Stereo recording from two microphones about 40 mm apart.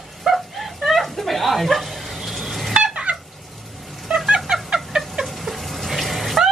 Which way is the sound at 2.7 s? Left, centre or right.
Right.